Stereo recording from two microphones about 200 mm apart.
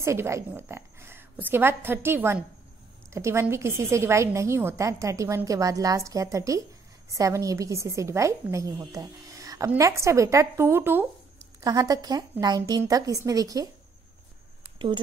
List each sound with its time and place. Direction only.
0.0 s a woman's voice: 15° right (ahead or behind)